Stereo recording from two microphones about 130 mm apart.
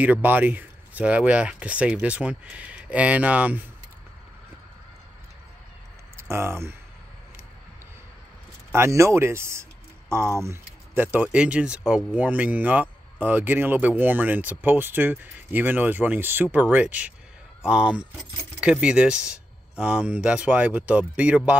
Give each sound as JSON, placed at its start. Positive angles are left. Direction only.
{"t": 0.0, "sound": "speech", "side_deg": -10}
{"t": 6.1, "sound": "speech", "side_deg": -20}
{"t": 8.7, "sound": "speech", "side_deg": -20}
{"t": 10.4, "sound": "keys jangling", "side_deg": -20}
{"t": 11.1, "sound": "speech", "side_deg": -10}